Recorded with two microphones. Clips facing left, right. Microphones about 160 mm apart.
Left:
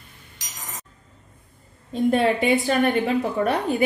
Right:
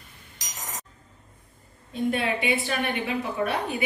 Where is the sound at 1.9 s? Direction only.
40° left (ahead or behind).